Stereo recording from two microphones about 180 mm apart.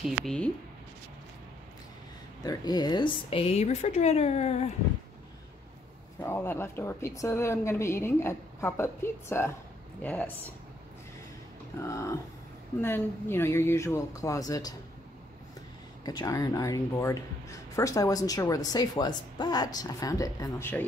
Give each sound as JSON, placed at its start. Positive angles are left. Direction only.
{"t": 0.0, "sound": "speech", "side_deg": 0}
{"t": 2.4, "sound": "speech", "side_deg": 20}
{"t": 6.2, "sound": "a woman's voice", "side_deg": 15}
{"t": 11.8, "sound": "a woman's voice", "side_deg": 15}
{"t": 16.1, "sound": "speech", "side_deg": 20}